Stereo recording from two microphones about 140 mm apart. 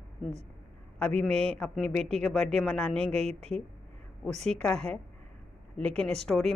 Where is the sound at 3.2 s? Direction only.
50° right (ahead or behind).